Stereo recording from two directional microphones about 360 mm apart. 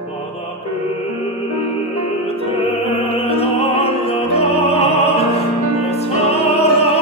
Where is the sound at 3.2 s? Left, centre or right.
Centre.